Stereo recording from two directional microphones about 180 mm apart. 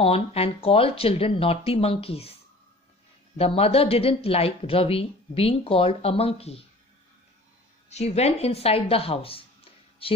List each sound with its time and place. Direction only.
0.0 s a woman's voice: 35° left (ahead or behind)
3.3 s a woman's voice: 35° left (ahead or behind)
7.9 s speech: 35° left (ahead or behind)